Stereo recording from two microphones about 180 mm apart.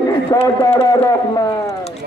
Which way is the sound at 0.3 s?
20° left (ahead or behind).